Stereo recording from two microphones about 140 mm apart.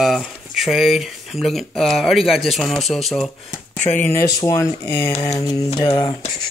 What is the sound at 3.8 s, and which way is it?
Speech, 15° left (ahead or behind).